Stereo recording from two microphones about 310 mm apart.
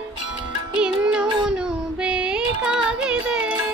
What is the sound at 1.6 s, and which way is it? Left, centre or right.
Child singing, centre.